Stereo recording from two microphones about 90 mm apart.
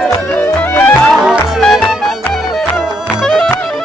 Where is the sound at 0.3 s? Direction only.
20° left (ahead or behind).